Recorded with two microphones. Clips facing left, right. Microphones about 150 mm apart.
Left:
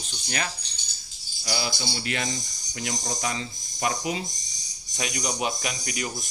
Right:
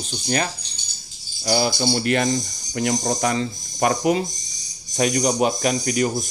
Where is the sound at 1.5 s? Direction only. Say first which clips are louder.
Right 10 dB; 45° right (ahead or behind).